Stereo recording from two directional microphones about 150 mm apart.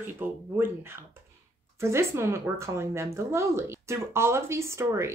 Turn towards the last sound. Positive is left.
turn(degrees=-20)  # may be behind; listen again after turning